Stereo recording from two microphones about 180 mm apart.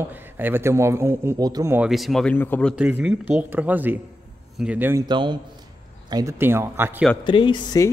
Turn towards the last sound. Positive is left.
turn(degrees=25)  # may be behind; listen again after turning